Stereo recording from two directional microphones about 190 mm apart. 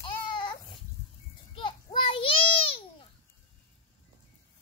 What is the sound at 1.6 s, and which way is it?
Children playing, 25° left (ahead or behind).